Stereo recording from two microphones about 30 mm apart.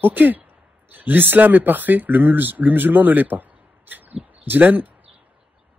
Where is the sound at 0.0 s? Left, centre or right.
Right.